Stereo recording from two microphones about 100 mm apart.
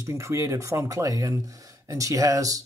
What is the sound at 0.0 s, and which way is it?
Speech, 30° right (ahead or behind).